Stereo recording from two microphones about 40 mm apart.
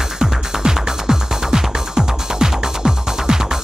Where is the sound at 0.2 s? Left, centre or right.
Centre.